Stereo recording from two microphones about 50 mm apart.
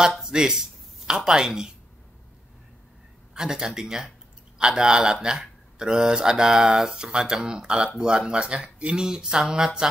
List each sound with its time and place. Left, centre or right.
0.2 s speech: centre
3.3 s speech: centre